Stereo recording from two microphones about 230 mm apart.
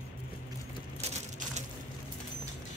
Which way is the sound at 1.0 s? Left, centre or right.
Right.